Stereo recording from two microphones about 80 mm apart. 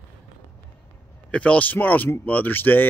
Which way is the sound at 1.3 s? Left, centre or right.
Centre.